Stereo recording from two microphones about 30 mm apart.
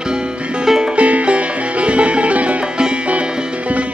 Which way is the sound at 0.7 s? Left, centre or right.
Centre.